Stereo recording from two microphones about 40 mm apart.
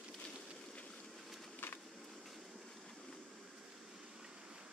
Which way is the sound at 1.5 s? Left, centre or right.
Left.